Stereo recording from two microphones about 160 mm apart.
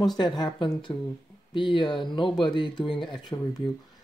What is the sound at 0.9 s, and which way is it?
Speech, 15° left (ahead or behind).